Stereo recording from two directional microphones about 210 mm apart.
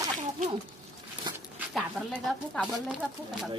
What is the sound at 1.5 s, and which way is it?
Speech, 5° right (ahead or behind).